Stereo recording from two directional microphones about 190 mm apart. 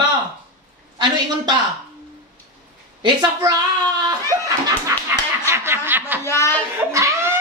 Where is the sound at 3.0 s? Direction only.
20° right (ahead or behind).